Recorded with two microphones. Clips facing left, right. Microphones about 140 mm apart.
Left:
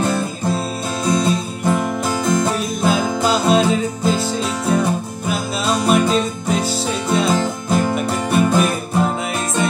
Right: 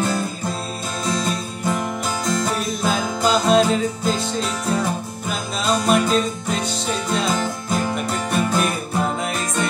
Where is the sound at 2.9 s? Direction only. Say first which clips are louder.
Left 2 dB; 5° left (ahead or behind).